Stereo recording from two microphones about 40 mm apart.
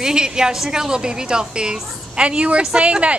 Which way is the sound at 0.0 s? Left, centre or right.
Centre.